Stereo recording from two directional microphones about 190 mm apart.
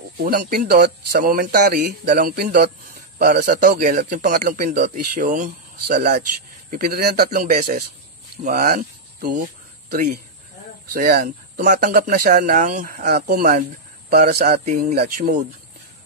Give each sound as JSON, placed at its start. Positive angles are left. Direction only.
{"t": 0.2, "sound": "a man's voice", "side_deg": -50}
{"t": 11.6, "sound": "speech", "side_deg": -45}